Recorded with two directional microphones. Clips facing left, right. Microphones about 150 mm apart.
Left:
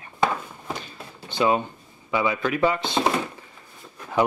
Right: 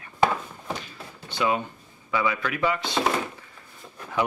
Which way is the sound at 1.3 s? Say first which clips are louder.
Left 4 dB; 30° left (ahead or behind).